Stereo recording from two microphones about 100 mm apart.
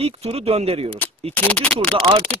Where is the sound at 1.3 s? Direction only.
15° left (ahead or behind).